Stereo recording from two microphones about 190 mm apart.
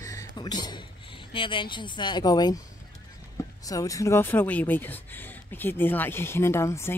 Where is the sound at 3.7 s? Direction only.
20° left (ahead or behind).